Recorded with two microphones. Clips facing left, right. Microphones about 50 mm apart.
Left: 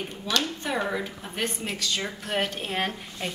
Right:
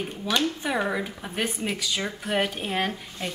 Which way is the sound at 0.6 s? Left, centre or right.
Centre.